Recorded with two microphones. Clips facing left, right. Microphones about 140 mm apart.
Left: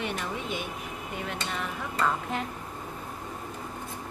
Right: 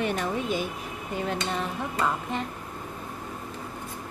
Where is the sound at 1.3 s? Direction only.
30° right (ahead or behind).